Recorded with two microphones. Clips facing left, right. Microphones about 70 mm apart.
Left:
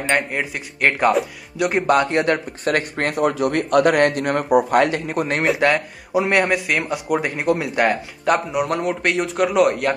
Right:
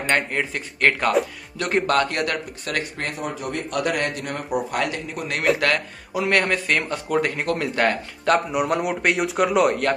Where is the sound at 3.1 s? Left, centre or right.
Left.